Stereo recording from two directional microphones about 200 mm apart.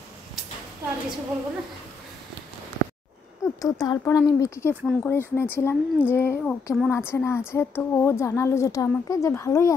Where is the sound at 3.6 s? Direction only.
15° left (ahead or behind).